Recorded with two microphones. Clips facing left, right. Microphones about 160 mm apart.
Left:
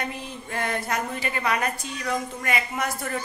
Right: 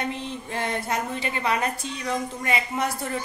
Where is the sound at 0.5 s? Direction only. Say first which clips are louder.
Left 1 dB; 25° right (ahead or behind).